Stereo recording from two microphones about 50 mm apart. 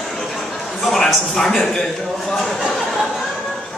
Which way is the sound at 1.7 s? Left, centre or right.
Centre.